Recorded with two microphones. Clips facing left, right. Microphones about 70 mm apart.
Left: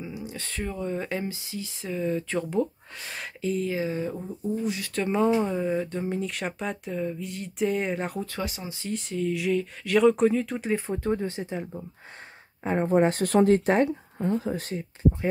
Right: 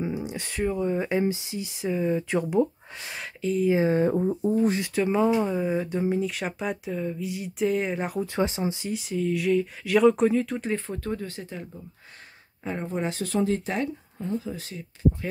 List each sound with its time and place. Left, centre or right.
0.2 s speech: centre
3.7 s speech: right
4.9 s speech: centre
8.3 s speech: right
8.8 s speech: centre
10.9 s speech: left
12.8 s speech: left